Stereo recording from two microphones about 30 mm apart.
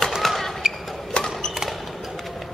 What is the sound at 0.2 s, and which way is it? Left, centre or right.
Basketball bounce, centre.